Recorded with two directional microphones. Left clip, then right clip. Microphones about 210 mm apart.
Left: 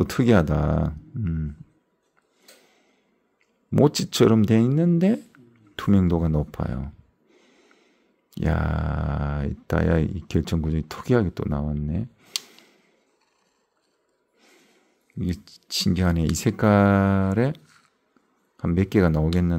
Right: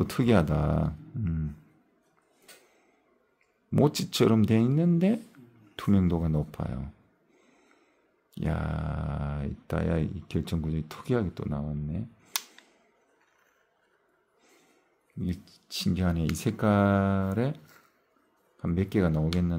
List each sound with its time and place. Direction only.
0.0 s speech: 20° left (ahead or behind)
3.7 s speech: 20° left (ahead or behind)
7.3 s snort: 20° left (ahead or behind)
8.3 s speech: 25° left (ahead or behind)
15.1 s speech: 35° left (ahead or behind)
18.6 s speech: 30° left (ahead or behind)